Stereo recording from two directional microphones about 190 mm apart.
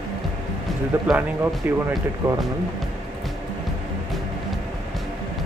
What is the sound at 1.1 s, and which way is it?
Speech, centre (ahead or behind).